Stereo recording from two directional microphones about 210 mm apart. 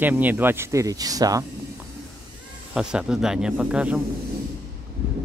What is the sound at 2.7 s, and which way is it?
Speech, 5° right (ahead or behind).